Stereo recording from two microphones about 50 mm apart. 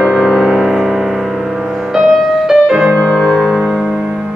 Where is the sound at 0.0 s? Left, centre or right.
Centre.